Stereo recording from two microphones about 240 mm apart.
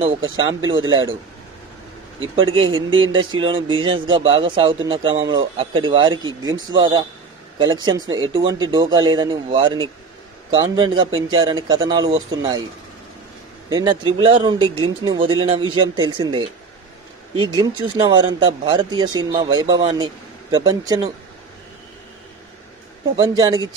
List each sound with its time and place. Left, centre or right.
0.7 s speech: centre
2.3 s a man's voice: right
13.7 s a man's voice: centre
23.1 s a man's voice: centre